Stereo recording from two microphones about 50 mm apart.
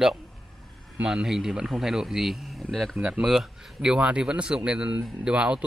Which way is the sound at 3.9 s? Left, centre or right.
Right.